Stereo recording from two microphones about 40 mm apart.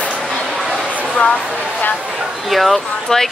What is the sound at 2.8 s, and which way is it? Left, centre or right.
Speech, left.